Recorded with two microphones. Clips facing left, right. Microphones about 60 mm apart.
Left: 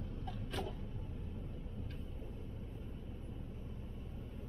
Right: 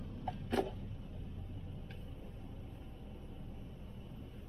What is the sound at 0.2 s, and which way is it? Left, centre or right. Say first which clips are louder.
Vehicle: right 9 dB; right.